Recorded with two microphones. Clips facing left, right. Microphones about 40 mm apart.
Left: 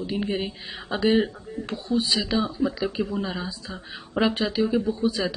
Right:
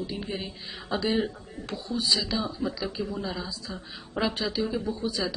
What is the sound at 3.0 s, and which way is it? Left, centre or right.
Speech, left.